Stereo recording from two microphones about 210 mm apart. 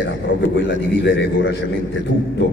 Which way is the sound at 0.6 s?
60° left (ahead or behind).